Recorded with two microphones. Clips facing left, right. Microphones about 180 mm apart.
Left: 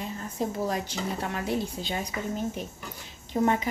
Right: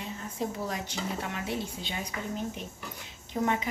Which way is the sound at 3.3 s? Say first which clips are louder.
Left 5 dB; 35° left (ahead or behind).